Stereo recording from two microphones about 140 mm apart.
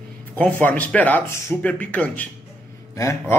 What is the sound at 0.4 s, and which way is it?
Speech, 10° left (ahead or behind).